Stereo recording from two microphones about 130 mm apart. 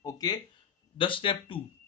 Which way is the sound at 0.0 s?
30° left (ahead or behind).